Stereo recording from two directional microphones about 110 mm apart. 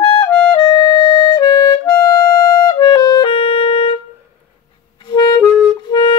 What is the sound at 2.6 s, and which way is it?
Music, 40° left (ahead or behind).